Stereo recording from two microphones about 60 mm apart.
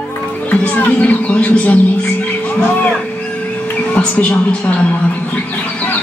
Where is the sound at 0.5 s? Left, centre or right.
Left.